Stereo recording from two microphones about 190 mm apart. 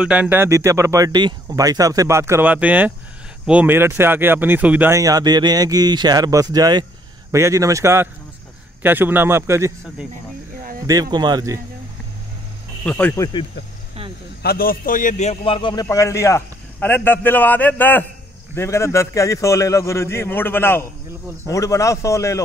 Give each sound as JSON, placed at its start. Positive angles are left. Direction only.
{"t": 0.0, "sound": "speech", "side_deg": -5}
{"t": 10.9, "sound": "speech", "side_deg": -20}
{"t": 12.8, "sound": "a man's voice", "side_deg": 10}
{"t": 14.4, "sound": "a man's voice", "side_deg": 50}